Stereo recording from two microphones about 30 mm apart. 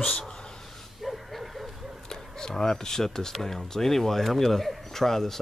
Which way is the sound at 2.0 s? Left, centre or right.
Left.